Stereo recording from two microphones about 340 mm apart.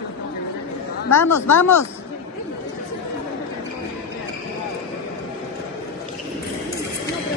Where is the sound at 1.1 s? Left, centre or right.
Left.